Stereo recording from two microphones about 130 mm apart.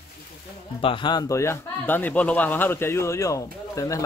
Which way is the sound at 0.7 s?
40° left (ahead or behind).